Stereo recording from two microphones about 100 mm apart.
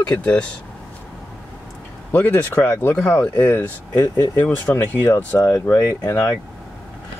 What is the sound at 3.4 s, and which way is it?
Speech, 20° left (ahead or behind).